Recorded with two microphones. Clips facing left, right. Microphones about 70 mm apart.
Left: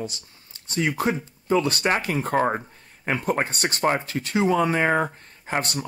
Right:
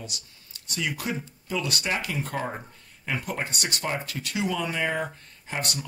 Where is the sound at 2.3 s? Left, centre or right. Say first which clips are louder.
Left 9 dB; left.